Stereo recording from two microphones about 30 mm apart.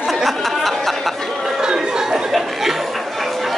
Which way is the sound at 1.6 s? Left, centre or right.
Right.